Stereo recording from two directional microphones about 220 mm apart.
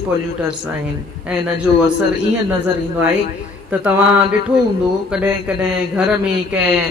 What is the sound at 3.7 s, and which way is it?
A man's voice, 5° right (ahead or behind).